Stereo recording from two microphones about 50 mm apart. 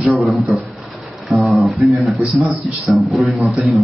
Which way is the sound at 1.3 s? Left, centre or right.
Centre.